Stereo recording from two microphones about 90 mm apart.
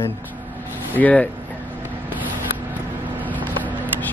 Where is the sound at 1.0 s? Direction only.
15° left (ahead or behind).